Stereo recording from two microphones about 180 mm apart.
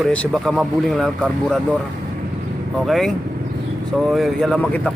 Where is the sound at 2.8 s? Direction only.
Centre (ahead or behind).